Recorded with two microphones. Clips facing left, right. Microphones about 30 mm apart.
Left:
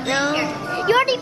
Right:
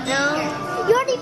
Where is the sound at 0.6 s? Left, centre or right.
Left.